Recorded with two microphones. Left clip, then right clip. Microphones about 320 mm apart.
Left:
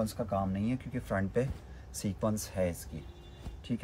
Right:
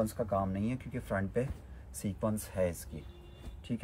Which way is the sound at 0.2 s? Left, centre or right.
Centre.